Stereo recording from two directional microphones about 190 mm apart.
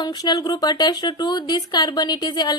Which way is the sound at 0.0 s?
20° left (ahead or behind).